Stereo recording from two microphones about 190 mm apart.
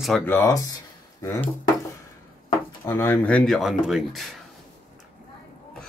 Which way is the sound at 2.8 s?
15° left (ahead or behind).